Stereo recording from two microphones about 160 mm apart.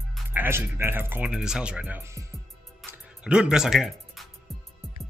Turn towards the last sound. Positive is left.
turn(degrees=0)  # may be behind; listen again after turning